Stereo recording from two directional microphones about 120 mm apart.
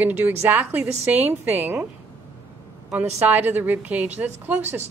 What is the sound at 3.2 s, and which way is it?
A woman's voice, 15° right (ahead or behind).